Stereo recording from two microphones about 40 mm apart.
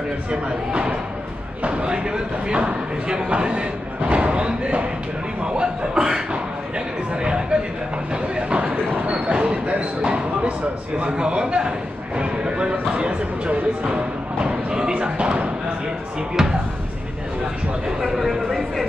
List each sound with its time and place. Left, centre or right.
0.3 s a man's voice: right
8.1 s a sound: right
8.9 s speech: right
16.4 s speech: centre
18.0 s speech: centre